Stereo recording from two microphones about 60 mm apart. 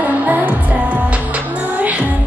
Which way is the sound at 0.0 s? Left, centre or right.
Right.